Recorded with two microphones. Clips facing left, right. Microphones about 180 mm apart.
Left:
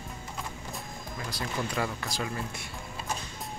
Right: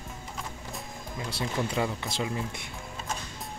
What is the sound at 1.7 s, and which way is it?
Speech, 25° right (ahead or behind).